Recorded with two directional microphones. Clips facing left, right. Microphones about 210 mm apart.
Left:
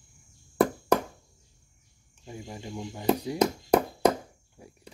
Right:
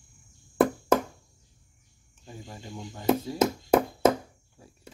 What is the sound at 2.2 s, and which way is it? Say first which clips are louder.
Speech: left 3 dB; 15° left (ahead or behind).